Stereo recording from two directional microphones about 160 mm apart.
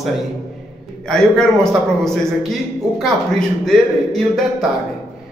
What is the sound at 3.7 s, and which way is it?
Speech, 5° left (ahead or behind).